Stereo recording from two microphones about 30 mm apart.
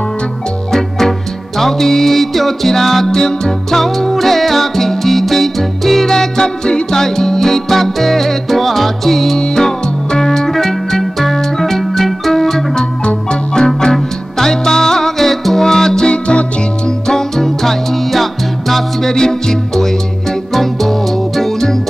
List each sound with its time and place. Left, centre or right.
0.7 s music: centre
3.2 s music: left
3.7 s music: centre
6.1 s music: left
9.4 s music: centre
13.0 s marimba: left
14.4 s music: centre
16.1 s music: left
17.1 s music: centre
19.0 s music: left
21.4 s music: centre